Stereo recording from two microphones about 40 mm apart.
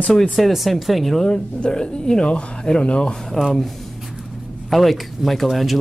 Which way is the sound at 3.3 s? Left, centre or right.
Centre.